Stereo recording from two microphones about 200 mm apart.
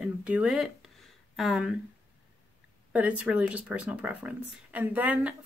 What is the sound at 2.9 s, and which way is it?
Speech, 5° right (ahead or behind).